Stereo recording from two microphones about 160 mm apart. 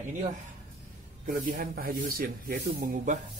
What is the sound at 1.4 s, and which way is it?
Speech, 65° right (ahead or behind).